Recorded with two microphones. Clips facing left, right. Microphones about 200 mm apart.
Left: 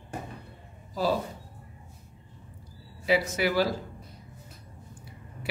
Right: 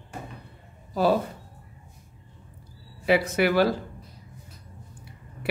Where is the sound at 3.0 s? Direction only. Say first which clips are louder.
Right 4 dB; 60° right (ahead or behind).